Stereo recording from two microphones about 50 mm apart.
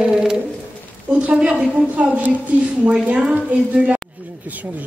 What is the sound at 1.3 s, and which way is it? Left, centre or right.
A woman's voice, right.